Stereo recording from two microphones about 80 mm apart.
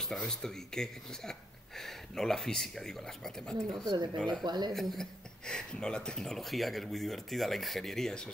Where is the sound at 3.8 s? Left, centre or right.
Right.